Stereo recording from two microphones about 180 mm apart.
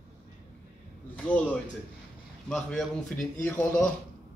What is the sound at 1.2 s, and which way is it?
Speech, 5° left (ahead or behind).